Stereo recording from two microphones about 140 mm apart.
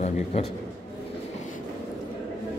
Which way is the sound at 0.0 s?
55° left (ahead or behind).